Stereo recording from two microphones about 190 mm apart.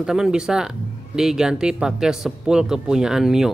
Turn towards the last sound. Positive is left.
turn(degrees=0)  # may be behind; listen again after turning